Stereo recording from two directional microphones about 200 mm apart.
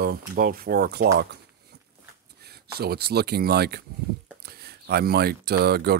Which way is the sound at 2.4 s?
50° right (ahead or behind).